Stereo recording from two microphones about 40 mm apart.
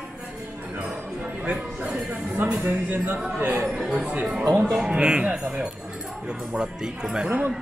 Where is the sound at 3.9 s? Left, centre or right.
Right.